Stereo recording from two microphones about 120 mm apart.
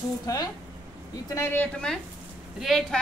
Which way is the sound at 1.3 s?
20° left (ahead or behind).